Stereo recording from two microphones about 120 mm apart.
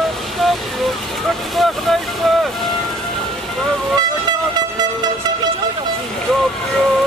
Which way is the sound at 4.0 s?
35° right (ahead or behind).